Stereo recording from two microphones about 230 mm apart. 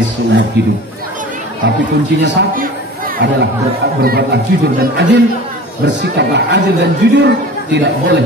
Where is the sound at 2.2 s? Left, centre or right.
Right.